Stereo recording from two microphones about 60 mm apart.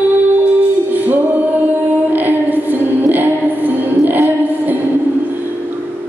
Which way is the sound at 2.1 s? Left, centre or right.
Right.